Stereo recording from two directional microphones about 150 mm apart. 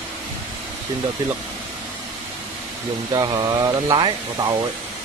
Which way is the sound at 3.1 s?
25° right (ahead or behind).